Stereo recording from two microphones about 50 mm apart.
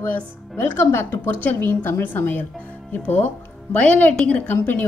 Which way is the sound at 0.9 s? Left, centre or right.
Left.